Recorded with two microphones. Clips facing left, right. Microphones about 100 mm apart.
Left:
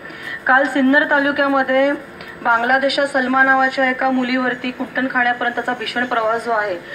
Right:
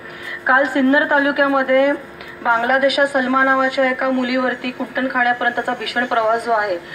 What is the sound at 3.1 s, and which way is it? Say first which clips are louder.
A woman's voice: left 1 dB; 20° right (ahead or behind).